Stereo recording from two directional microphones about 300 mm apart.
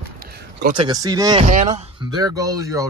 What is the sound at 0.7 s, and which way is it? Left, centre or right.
Speech, centre.